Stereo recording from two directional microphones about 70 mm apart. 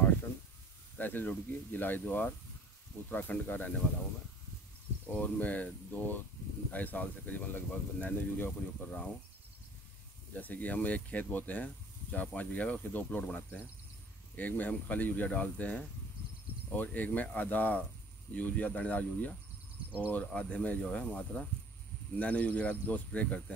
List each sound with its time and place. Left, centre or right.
0.9 s speech: left
5.0 s speech: left
10.3 s speech: left